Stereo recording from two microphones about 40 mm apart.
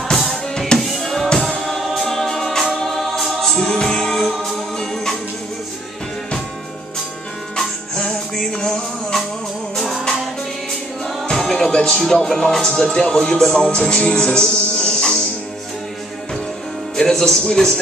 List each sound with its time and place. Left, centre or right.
0.1 s drum: centre
1.0 s music: centre
1.6 s choir: centre
3.7 s music: centre
7.5 s music: centre
9.8 s music: centre
11.1 s music: centre
13.1 s speech: centre
13.7 s music: centre
16.9 s speech: centre